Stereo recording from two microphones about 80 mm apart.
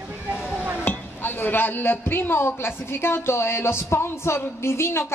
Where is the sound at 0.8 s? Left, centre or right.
Left.